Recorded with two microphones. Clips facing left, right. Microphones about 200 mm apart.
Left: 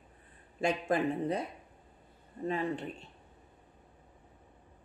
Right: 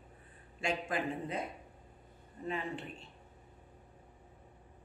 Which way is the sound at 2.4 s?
40° left (ahead or behind).